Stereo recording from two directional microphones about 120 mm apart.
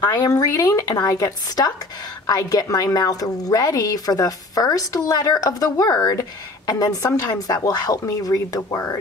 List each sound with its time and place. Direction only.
0.0 s a woman's voice: 30° left (ahead or behind)